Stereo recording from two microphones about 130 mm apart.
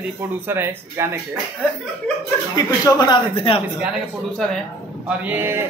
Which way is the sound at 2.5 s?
30° left (ahead or behind).